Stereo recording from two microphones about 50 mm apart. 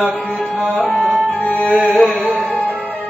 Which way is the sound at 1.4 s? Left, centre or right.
Left.